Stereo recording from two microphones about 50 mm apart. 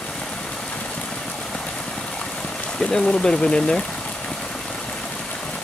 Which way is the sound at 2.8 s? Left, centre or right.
Centre.